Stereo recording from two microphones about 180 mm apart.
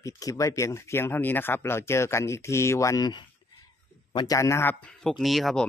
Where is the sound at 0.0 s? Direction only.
15° left (ahead or behind).